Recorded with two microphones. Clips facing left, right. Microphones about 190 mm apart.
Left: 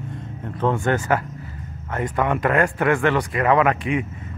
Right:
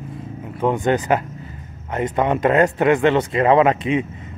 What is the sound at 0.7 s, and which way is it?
Speech, 20° right (ahead or behind).